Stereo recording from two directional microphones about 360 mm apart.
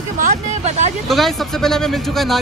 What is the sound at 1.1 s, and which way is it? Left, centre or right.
Speech, centre.